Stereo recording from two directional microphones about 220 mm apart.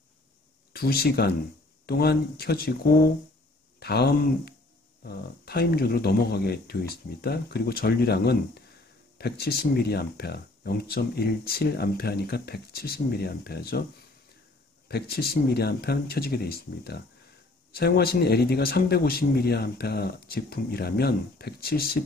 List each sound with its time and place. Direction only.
0.7 s speech: 45° left (ahead or behind)
14.9 s speech: 45° left (ahead or behind)